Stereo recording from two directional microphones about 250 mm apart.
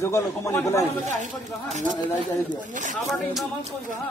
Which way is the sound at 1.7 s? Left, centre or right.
Right.